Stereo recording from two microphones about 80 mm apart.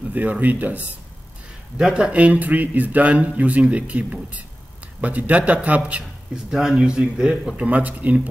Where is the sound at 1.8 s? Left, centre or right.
Centre.